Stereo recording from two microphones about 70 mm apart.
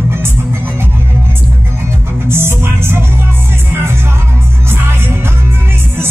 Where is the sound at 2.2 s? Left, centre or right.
Right.